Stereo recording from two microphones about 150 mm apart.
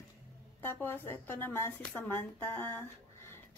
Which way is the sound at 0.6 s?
15° left (ahead or behind).